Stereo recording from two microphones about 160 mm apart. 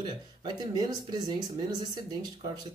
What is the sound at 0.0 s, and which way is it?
Speech, 25° right (ahead or behind).